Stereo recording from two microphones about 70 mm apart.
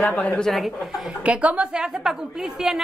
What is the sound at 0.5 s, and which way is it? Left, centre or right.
Speech, centre.